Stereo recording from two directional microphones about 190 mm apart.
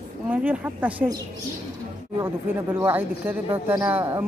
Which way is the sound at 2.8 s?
10° right (ahead or behind).